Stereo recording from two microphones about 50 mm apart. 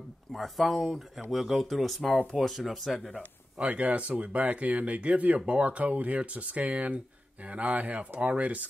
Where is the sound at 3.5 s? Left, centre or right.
Right.